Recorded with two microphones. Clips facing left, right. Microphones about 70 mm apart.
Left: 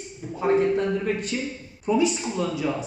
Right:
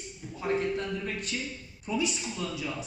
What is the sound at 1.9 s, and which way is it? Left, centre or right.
Speech, left.